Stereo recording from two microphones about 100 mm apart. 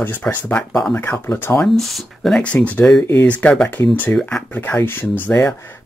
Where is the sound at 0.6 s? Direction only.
5° left (ahead or behind).